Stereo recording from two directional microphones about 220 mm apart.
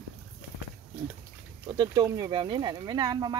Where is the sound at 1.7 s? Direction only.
15° right (ahead or behind).